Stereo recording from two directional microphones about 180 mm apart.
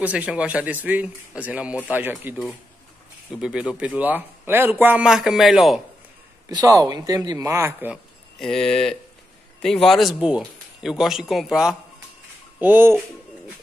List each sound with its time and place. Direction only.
0.0 s a man's voice: 5° right (ahead or behind)
6.5 s speech: 20° right (ahead or behind)
8.4 s a man's voice: centre (ahead or behind)